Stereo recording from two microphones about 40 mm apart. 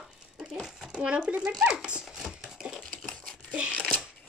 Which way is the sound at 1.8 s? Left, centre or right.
Right.